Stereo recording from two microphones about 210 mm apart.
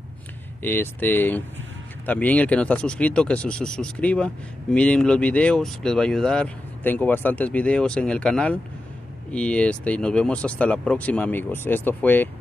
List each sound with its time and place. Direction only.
0.6 s speech: 10° left (ahead or behind)